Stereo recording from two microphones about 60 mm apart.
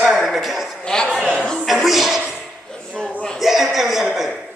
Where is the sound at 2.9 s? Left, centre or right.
Centre.